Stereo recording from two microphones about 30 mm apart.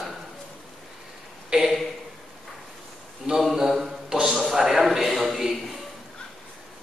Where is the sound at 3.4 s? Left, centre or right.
Centre.